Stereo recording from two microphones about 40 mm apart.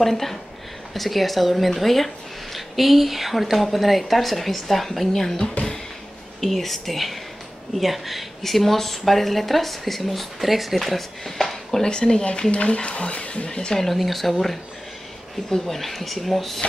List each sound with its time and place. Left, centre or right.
0.0 s speech: centre
11.8 s speech: centre
12.3 s speech: left
13.7 s speech: centre